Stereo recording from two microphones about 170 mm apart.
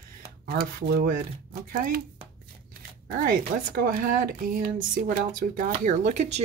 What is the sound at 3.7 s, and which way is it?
Speech, 60° right (ahead or behind).